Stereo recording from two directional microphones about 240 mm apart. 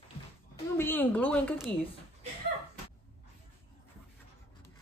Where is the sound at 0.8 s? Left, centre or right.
Centre.